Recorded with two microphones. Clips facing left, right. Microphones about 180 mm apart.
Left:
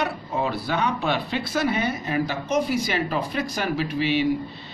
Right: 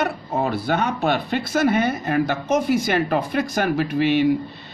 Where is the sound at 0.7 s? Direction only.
45° right (ahead or behind).